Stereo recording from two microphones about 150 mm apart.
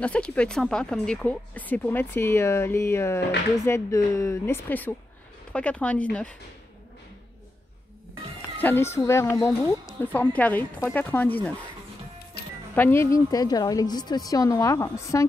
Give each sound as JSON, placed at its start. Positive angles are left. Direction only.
{"t": 0.0, "sound": "speech", "side_deg": 10}
{"t": 8.5, "sound": "speech", "side_deg": 15}
{"t": 12.7, "sound": "a woman's voice", "side_deg": 15}